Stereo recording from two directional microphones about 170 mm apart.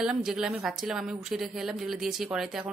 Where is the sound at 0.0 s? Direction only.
5° right (ahead or behind).